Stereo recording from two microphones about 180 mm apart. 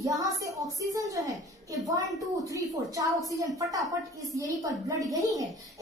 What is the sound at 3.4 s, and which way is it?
A woman's voice, 20° right (ahead or behind).